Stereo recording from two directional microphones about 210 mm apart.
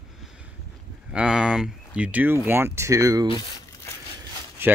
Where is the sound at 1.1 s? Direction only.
5° right (ahead or behind).